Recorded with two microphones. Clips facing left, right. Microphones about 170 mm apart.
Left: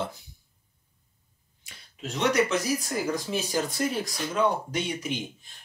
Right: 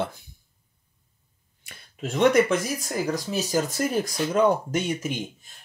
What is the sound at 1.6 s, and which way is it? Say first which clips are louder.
Speech: right 5 dB; 50° right (ahead or behind).